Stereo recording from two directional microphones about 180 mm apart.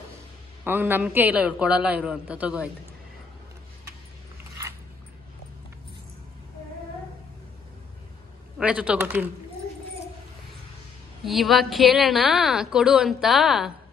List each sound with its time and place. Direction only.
0.7 s a man's voice: 10° right (ahead or behind)
8.5 s a man's voice: 5° right (ahead or behind)
11.2 s a woman's voice: centre (ahead or behind)